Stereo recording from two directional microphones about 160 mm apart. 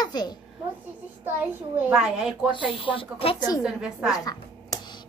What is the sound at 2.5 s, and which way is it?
Speech, 35° left (ahead or behind).